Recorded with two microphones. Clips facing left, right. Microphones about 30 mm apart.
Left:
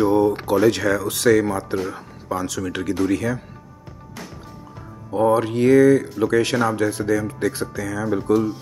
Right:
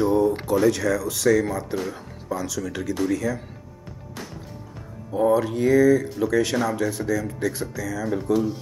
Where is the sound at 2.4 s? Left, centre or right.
Left.